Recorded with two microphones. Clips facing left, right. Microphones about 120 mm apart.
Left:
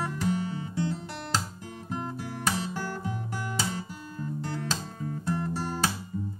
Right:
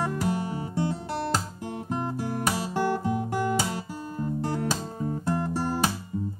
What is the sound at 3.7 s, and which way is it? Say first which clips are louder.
Guitar: right 4 dB; 35° right (ahead or behind).